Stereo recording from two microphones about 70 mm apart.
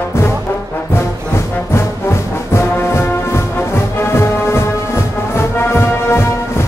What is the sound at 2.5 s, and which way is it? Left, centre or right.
Music, left.